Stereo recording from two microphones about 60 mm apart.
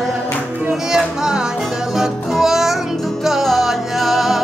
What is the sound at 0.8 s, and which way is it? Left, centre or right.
Music, centre.